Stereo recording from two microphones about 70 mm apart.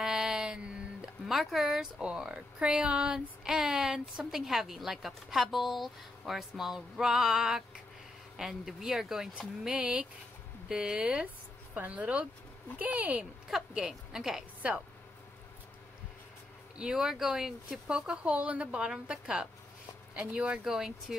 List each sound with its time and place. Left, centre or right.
0.0 s a sound: centre
1.0 s speech: centre
2.0 s speech: centre
13.7 s speech: centre
14.6 s speech: centre
16.7 s speech: centre